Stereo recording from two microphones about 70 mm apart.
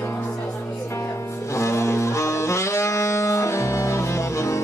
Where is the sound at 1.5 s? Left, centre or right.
Left.